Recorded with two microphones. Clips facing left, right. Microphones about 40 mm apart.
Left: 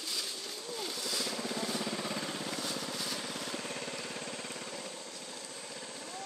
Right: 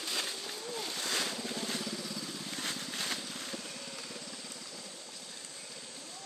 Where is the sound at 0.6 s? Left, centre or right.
Centre.